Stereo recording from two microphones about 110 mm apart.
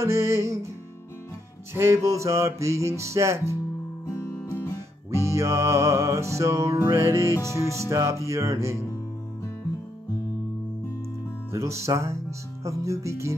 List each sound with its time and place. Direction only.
0.0 s music: 25° right (ahead or behind)
1.7 s music: 25° right (ahead or behind)
4.0 s music: 25° left (ahead or behind)
5.1 s music: 25° right (ahead or behind)
11.5 s music: 25° right (ahead or behind)